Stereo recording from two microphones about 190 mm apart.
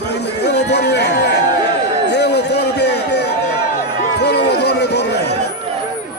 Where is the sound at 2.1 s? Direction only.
60° left (ahead or behind).